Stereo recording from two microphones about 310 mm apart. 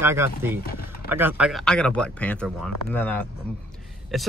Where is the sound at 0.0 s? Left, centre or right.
Centre.